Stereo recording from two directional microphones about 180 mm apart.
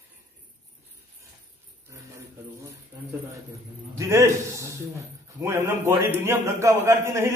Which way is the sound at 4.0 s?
15° right (ahead or behind).